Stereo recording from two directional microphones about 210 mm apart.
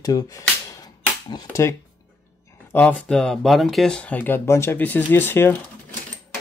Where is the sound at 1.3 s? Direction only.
15° left (ahead or behind).